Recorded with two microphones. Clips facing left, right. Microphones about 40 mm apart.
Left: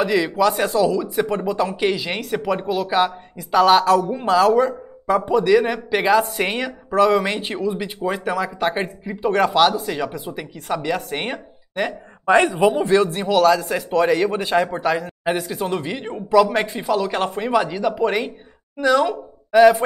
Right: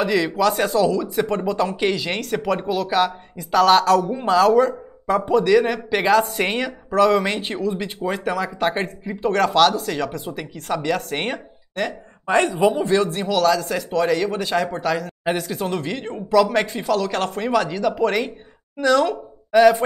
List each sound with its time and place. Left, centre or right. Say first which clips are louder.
0.0 s a man's voice: left 1 dB; centre
6.9 s speech: even; centre
13.3 s a man's voice: left 3 dB; left